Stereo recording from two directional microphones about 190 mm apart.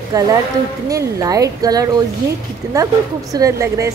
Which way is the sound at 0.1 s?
20° right (ahead or behind).